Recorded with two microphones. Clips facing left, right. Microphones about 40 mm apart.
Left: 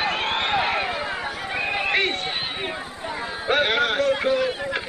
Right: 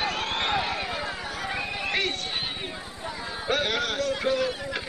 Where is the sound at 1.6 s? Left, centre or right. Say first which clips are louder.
Left 8 dB; left.